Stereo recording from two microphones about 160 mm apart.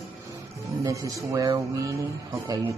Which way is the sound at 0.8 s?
20° right (ahead or behind).